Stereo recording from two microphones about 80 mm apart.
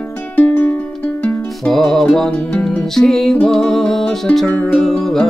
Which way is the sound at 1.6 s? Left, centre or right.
Centre.